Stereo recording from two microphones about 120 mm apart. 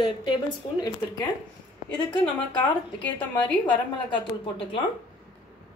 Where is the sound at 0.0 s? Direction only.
40° left (ahead or behind).